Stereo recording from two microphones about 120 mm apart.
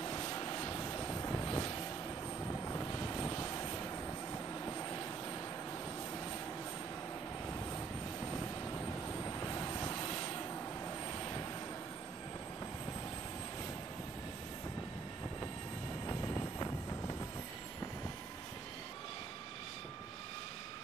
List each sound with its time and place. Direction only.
0.0 s vehicle: 30° left (ahead or behind)
9.2 s vehicle: 25° left (ahead or behind)
16.1 s vehicle: 20° left (ahead or behind)